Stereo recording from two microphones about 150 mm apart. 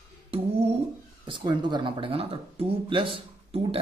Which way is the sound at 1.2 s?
30° right (ahead or behind).